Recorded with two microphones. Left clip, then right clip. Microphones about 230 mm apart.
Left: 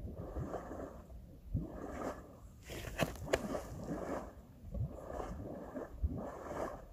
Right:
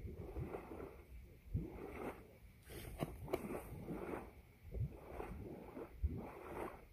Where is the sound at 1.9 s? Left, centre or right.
Left.